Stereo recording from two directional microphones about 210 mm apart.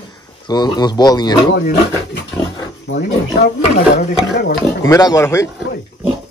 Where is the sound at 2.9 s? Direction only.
55° left (ahead or behind).